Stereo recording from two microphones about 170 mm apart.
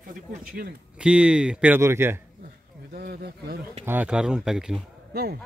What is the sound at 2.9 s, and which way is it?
Speech, 65° right (ahead or behind).